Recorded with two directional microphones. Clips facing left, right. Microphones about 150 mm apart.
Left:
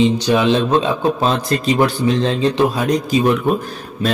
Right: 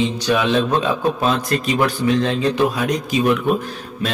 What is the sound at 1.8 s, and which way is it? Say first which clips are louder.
A man's voice: even; 30° left (ahead or behind).